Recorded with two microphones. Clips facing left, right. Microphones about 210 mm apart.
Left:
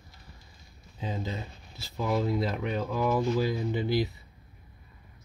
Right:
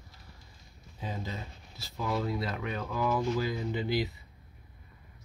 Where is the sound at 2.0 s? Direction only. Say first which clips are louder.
Left 4 dB; 25° left (ahead or behind).